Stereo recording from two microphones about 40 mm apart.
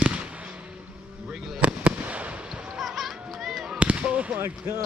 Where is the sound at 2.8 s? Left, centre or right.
Centre.